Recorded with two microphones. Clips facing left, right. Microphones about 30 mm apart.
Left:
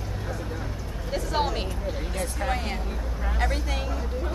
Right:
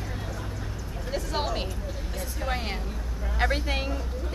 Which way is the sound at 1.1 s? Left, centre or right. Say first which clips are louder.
Left 3 dB; centre.